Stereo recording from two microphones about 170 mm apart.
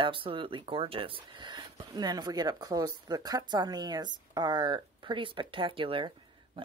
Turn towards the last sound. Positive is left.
turn(degrees=-30)  # may be behind; listen again after turning